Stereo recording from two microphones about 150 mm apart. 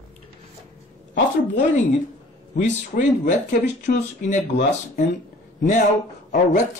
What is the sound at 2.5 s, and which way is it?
Speech, 55° left (ahead or behind).